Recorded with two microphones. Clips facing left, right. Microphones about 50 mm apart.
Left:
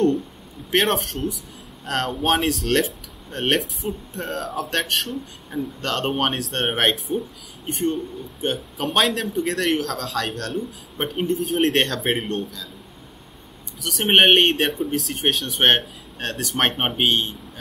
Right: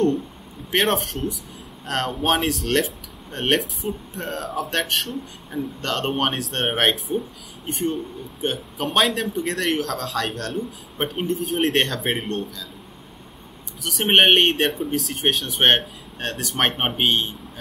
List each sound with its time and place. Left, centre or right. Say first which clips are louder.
0.7 s speech: even; centre
13.8 s speech: even; centre